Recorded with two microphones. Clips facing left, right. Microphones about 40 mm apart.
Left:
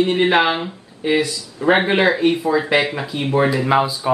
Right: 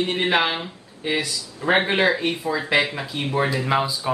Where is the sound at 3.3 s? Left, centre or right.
Centre.